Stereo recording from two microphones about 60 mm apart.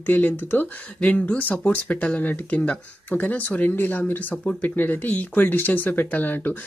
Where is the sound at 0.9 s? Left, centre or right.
Left.